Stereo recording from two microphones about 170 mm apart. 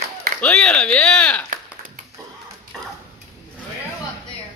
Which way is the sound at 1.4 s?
55° right (ahead or behind).